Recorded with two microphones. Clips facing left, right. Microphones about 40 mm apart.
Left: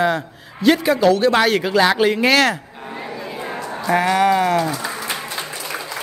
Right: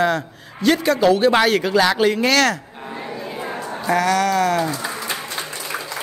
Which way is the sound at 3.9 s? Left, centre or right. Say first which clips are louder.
Left 2 dB; left.